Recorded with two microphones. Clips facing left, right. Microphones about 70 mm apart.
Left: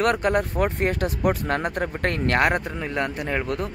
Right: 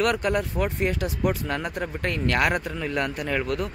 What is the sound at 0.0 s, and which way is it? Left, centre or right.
Speech, left.